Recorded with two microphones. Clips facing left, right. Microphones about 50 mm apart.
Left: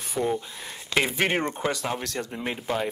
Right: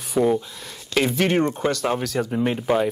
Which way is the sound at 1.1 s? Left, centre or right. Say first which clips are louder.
Right 5 dB; centre.